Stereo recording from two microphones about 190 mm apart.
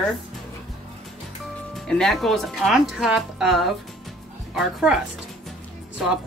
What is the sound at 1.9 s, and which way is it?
Speech, centre (ahead or behind).